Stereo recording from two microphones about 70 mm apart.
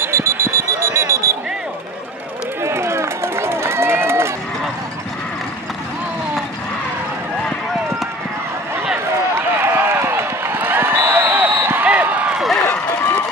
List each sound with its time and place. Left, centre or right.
0.0 s alarm: right
2.6 s run: right
9.1 s run: right
12.4 s run: centre